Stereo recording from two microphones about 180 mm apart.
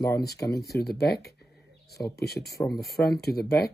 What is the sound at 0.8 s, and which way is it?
Speech, 60° left (ahead or behind).